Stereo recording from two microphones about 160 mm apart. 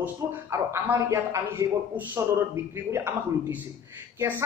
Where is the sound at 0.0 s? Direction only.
15° right (ahead or behind).